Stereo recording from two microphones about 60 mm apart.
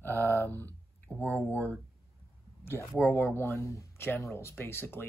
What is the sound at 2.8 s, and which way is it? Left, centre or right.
Speech, left.